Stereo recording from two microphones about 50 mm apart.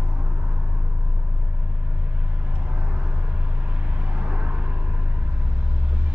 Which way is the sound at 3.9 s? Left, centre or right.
Right.